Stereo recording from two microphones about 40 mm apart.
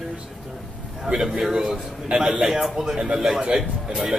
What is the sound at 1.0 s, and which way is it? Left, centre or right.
A man's voice, centre.